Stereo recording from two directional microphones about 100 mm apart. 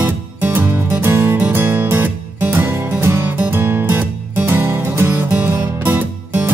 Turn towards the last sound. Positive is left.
turn(degrees=-20)  # may be behind; listen again after turning